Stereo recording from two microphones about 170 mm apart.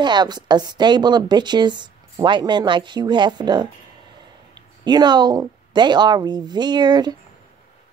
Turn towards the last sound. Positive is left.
turn(degrees=-25)  # may be behind; listen again after turning